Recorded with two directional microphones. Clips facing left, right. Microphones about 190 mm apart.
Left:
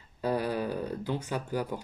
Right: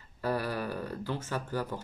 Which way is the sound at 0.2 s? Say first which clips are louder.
Left 3 dB; 20° left (ahead or behind).